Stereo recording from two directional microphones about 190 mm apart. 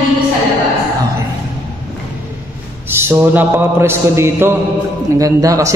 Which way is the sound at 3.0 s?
10° right (ahead or behind).